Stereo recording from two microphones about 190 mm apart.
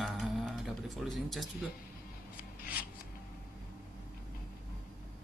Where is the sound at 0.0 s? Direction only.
Centre (ahead or behind).